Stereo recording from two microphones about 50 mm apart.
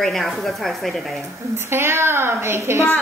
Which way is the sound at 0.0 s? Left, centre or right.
Centre.